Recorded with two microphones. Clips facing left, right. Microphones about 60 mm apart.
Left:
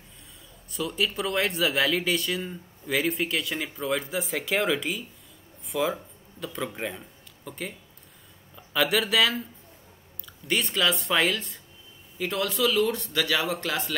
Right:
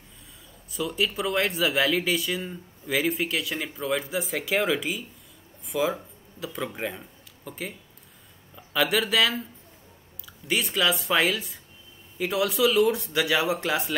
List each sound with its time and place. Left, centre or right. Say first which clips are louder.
0.7 s speech: right 1 dB; centre